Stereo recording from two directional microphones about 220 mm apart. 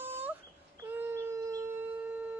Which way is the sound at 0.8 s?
10° right (ahead or behind).